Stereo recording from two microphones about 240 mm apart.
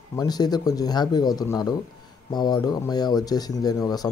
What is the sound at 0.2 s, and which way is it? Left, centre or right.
Speech, centre.